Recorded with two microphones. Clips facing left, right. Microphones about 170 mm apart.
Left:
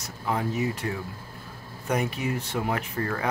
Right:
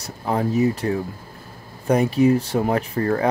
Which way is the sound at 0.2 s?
40° right (ahead or behind).